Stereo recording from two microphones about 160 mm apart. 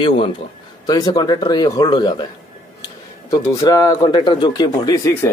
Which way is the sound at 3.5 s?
20° left (ahead or behind).